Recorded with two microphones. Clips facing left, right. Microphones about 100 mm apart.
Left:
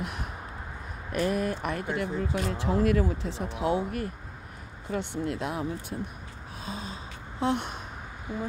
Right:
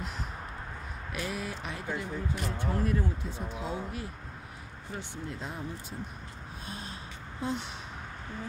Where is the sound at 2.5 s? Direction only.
90° left.